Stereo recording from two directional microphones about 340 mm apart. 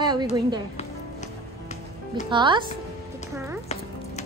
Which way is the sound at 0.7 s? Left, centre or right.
Centre.